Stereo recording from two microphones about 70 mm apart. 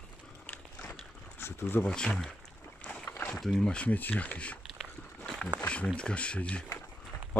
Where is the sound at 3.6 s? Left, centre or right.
Centre.